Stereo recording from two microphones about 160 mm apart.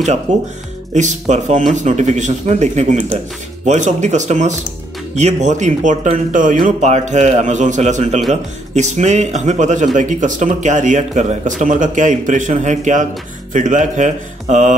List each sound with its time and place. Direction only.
0.3 s speech: 50° right (ahead or behind)